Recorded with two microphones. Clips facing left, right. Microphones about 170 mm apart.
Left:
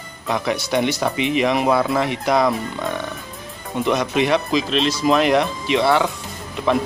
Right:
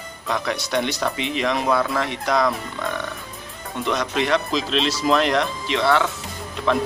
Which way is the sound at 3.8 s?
10° left (ahead or behind).